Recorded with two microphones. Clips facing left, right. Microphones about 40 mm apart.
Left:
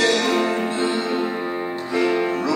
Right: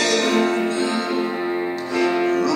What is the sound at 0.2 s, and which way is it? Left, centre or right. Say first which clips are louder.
Music: right 2 dB; centre.